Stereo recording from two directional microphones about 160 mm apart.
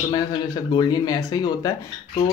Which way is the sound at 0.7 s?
25° left (ahead or behind).